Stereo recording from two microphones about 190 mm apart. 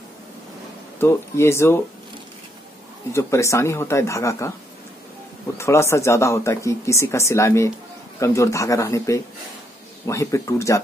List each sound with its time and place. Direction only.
0.9 s speech: 15° left (ahead or behind)
3.1 s speech: 15° left (ahead or behind)
5.6 s speech: 15° left (ahead or behind)